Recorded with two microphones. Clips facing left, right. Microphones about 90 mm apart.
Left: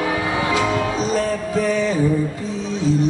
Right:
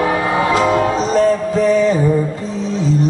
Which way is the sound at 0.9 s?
60° right (ahead or behind).